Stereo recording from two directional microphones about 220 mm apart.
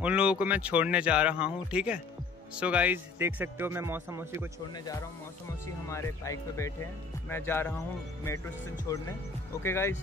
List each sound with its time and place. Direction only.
0.0 s speech: 5° right (ahead or behind)
5.9 s speech: 15° left (ahead or behind)
8.9 s speech: 15° left (ahead or behind)